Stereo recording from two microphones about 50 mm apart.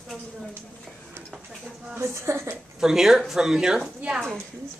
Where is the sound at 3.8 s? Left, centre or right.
Right.